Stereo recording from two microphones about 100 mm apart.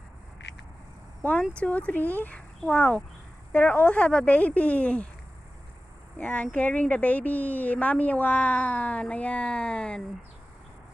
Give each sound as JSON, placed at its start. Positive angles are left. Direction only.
{"t": 1.4, "sound": "a woman's voice", "side_deg": 10}
{"t": 6.1, "sound": "a woman's voice", "side_deg": 15}